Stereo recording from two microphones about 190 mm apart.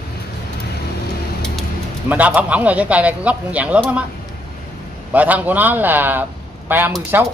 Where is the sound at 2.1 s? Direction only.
10° right (ahead or behind).